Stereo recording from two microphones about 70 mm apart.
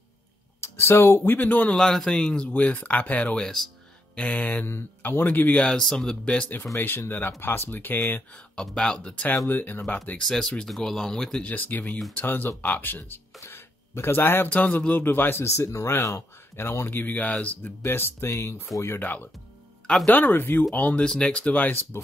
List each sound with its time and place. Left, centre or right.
0.6 s speech: left
1.6 s speech: centre
4.1 s speech: centre
5.7 s speech: centre
6.8 s speech: left
8.6 s speech: centre
9.5 s speech: left
10.1 s speech: centre
11.4 s speech: left
14.5 s speech: left
15.4 s speech: left
17.8 s speech: left